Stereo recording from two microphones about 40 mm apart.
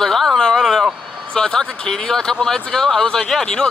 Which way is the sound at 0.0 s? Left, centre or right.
Centre.